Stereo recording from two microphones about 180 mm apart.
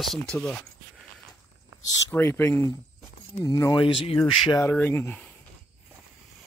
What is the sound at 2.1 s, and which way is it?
Speech, 15° left (ahead or behind).